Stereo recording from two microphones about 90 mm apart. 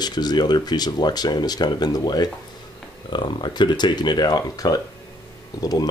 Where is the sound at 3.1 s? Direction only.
60° left (ahead or behind).